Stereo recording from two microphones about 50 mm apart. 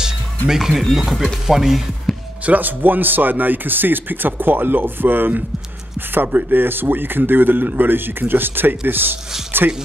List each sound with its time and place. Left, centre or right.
0.0 s speech: centre
2.1 s a sound: centre
2.4 s speech: right